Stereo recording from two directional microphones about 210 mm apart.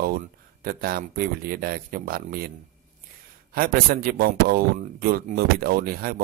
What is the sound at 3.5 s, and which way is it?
Speech, 45° right (ahead or behind).